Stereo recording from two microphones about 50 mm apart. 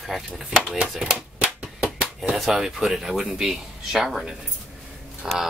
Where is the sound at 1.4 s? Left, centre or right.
Right.